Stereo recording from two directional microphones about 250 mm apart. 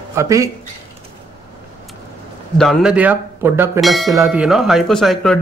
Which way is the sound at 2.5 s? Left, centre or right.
Centre.